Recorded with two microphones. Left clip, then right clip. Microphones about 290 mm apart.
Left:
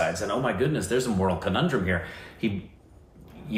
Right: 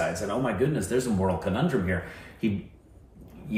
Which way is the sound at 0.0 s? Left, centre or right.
Centre.